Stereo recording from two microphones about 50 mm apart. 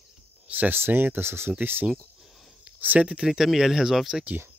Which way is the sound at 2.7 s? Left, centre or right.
Right.